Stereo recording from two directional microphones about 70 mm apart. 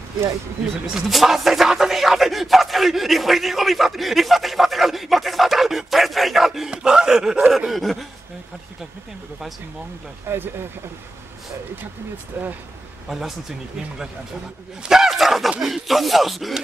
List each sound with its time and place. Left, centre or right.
0.9 s music: centre
6.7 s a sound: centre
7.5 s music: centre
10.2 s speech: right
12.4 s speech: right
14.9 s music: centre